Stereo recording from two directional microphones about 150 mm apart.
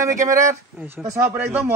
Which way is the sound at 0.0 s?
20° right (ahead or behind).